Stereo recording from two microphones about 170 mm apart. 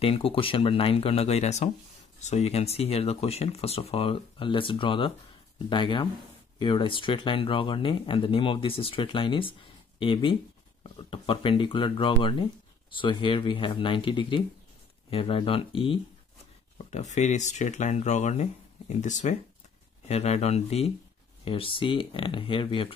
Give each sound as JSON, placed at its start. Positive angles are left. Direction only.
{"t": 0.0, "sound": "speech", "side_deg": 35}
{"t": 16.7, "sound": "speech", "side_deg": 40}